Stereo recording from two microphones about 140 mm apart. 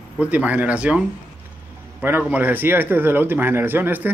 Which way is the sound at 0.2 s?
10° right (ahead or behind).